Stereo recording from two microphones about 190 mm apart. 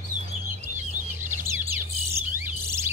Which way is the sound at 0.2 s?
35° right (ahead or behind).